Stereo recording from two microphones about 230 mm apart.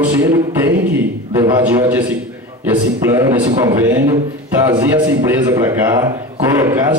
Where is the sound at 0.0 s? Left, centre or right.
Centre.